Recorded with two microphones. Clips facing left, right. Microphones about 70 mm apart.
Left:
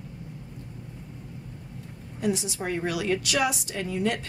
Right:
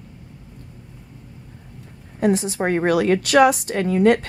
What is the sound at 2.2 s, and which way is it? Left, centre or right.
Speech, right.